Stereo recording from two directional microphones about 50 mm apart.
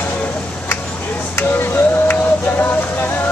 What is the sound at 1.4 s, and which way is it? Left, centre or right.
Music, left.